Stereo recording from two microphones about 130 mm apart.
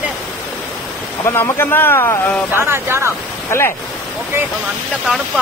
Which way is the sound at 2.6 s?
20° right (ahead or behind).